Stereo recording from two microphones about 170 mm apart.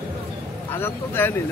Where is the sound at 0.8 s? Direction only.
15° left (ahead or behind).